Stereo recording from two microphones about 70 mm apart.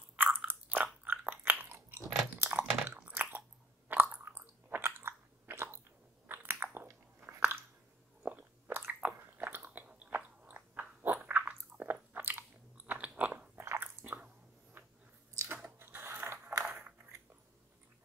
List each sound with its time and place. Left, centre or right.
0.5 s biting: right
1.0 s chewing: right
6.2 s biting: right
13.6 s biting: right
14.0 s chewing: right
15.4 s biting: right